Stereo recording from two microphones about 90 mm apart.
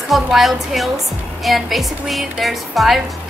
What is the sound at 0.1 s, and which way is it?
Speech, centre (ahead or behind).